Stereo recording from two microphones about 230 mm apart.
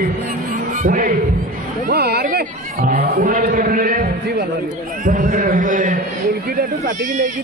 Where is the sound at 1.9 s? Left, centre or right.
Right.